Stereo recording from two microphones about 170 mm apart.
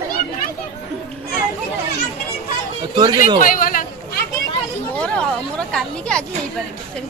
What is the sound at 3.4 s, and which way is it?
Speech, 55° left (ahead or behind).